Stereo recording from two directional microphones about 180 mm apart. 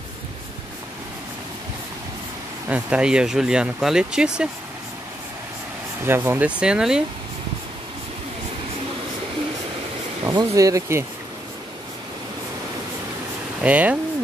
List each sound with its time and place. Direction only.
2.7 s speech: 5° right (ahead or behind)
6.0 s speech: 10° right (ahead or behind)
10.2 s speech: 20° right (ahead or behind)
13.6 s speech: 10° right (ahead or behind)